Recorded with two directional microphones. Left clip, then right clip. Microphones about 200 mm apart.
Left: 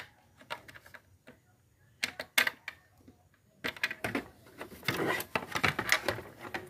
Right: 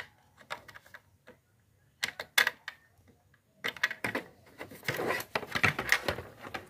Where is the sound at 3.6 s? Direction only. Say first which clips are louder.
Right 2 dB; 5° left (ahead or behind).